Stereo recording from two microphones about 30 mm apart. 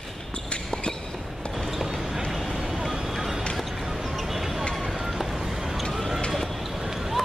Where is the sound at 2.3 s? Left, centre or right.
Centre.